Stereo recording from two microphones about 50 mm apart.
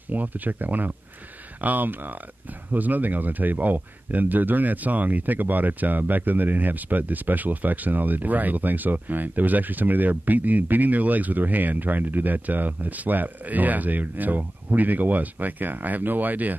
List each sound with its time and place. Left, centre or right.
0.1 s speech: right